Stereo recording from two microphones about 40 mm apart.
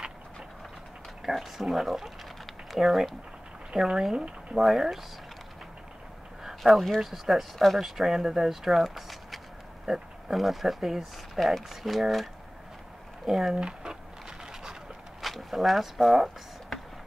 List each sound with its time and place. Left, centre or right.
1.2 s speech: centre
4.6 s speech: centre
6.6 s speech: centre
9.8 s a sound: centre
10.3 s speech: centre
13.6 s speech: centre
14.4 s a sound: centre
15.2 s speech: centre